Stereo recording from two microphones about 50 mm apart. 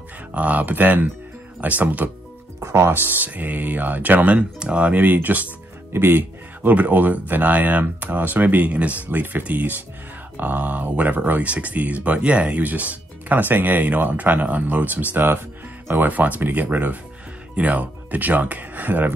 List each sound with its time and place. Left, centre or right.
0.3 s speech: right
2.7 s speech: right
4.6 s speech: right
5.0 s speech: right
6.7 s speech: right